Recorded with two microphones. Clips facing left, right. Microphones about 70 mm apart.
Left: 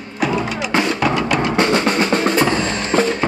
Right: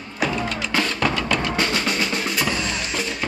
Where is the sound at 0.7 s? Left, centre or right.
Centre.